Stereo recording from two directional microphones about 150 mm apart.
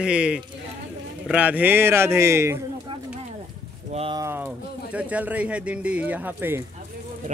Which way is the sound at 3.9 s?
40° right (ahead or behind).